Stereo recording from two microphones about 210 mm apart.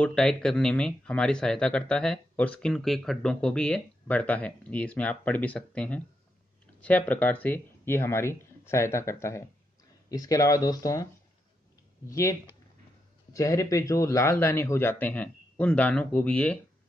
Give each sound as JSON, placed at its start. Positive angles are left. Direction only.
{"t": 0.0, "sound": "speech", "side_deg": 5}
{"t": 12.1, "sound": "speech", "side_deg": 15}